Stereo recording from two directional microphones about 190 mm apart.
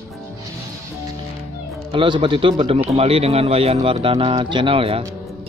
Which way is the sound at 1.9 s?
25° right (ahead or behind).